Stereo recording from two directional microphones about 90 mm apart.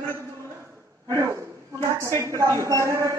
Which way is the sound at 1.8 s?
35° right (ahead or behind).